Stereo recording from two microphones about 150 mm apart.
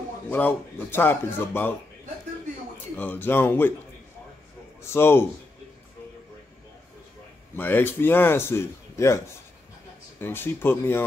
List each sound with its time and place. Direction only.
0.3 s a man's voice: 15° left (ahead or behind)
3.0 s a man's voice: 15° left (ahead or behind)
4.8 s a man's voice: 15° left (ahead or behind)
7.5 s a man's voice: 15° left (ahead or behind)
10.2 s a man's voice: 15° left (ahead or behind)